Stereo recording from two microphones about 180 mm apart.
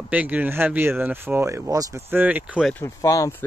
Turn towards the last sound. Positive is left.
turn(degrees=20)  # may be behind; listen again after turning